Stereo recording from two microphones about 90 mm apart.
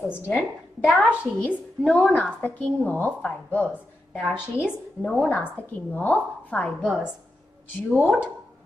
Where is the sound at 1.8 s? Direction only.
10° left (ahead or behind).